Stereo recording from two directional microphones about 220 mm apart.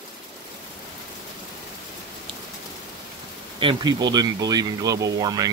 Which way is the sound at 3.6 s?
20° right (ahead or behind).